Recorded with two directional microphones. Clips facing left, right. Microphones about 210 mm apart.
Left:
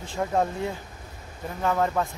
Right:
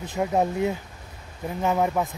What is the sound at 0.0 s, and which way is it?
Speech, 20° right (ahead or behind).